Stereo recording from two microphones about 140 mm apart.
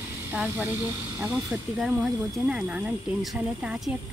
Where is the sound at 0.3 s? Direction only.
10° right (ahead or behind).